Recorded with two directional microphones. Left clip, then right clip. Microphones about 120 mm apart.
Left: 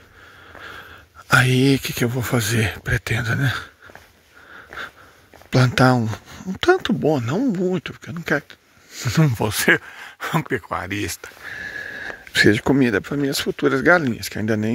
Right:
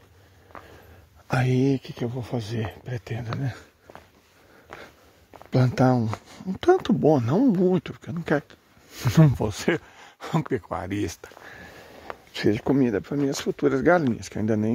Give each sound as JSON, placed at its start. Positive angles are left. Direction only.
{"t": 1.3, "sound": "speech", "side_deg": 10}
{"t": 1.8, "sound": "speech", "side_deg": 45}
{"t": 2.0, "sound": "speech", "side_deg": 65}
{"t": 2.5, "sound": "speech", "side_deg": 40}
{"t": 5.5, "sound": "speech", "side_deg": 0}
{"t": 6.4, "sound": "speech", "side_deg": -15}
{"t": 8.9, "sound": "speech", "side_deg": -30}
{"t": 9.4, "sound": "speech", "side_deg": 10}
{"t": 10.7, "sound": "speech", "side_deg": -20}
{"t": 12.1, "sound": "speech", "side_deg": 25}